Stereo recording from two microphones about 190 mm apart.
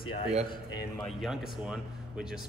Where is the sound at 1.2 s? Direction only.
5° right (ahead or behind).